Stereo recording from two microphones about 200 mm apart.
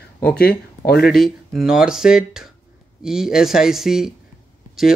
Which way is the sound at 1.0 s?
Centre (ahead or behind).